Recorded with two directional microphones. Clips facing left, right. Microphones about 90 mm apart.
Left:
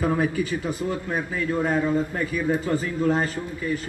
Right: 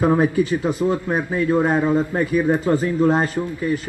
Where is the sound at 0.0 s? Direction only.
35° right (ahead or behind).